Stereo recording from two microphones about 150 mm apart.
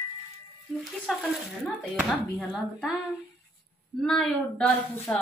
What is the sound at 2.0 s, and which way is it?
A woman's voice, 5° right (ahead or behind).